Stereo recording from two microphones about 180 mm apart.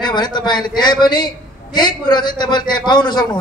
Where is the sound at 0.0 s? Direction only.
25° left (ahead or behind).